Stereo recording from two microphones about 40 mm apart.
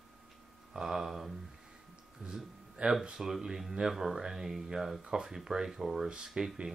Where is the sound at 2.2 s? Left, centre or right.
Centre.